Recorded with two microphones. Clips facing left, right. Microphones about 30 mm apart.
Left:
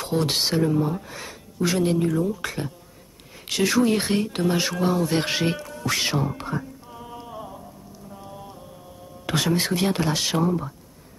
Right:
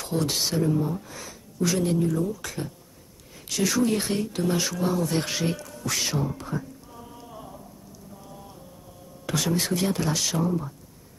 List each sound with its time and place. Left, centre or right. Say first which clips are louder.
0.1 s speech: left 3 dB; left
4.5 s speech: left 3 dB; left
6.3 s speech: left 3 dB; left
6.9 s music: left 5 dB; left
9.2 s speech: left 3 dB; left